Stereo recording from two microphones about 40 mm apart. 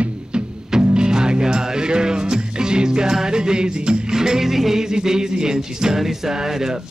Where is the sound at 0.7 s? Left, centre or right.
Centre.